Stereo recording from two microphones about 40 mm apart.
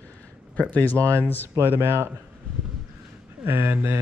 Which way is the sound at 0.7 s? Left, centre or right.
Left.